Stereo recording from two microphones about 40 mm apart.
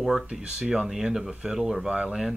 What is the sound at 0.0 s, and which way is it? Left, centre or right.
Speech, centre.